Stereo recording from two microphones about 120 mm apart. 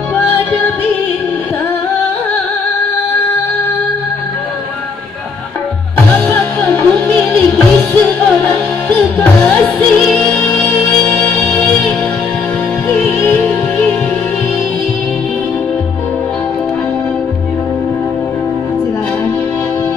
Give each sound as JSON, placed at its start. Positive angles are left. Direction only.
{"t": 6.2, "sound": "music", "side_deg": 15}